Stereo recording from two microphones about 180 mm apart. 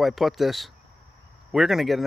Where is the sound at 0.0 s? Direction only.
Centre (ahead or behind).